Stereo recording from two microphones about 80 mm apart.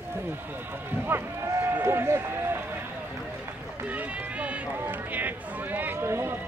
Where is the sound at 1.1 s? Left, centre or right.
Right.